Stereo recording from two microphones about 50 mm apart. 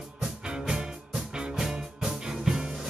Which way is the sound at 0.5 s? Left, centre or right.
Centre.